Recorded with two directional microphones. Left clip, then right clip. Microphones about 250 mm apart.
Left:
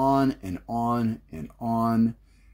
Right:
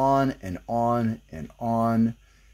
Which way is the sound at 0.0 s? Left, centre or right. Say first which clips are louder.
Right 1 dB; right.